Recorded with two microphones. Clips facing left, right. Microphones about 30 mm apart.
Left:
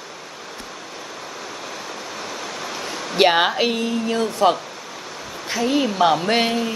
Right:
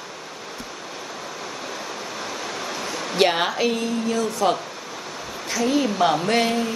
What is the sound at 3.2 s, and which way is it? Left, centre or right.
A woman's voice, centre.